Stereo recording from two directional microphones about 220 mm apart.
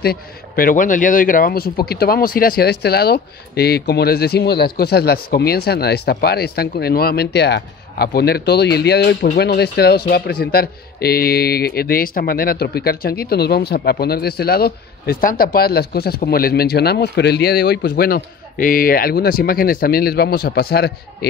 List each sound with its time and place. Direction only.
0.0 s a man's voice: 45° left (ahead or behind)